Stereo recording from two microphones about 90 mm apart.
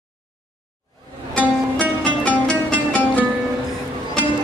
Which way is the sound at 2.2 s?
15° left (ahead or behind).